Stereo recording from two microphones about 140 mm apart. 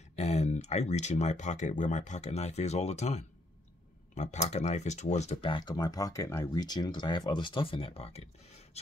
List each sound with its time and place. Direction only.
0.1 s speech: 50° left (ahead or behind)
5.4 s speech: 35° left (ahead or behind)